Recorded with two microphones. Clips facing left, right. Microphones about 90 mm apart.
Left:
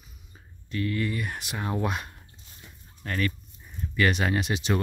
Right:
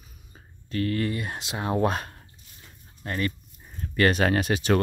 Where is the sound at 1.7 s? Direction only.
40° right (ahead or behind).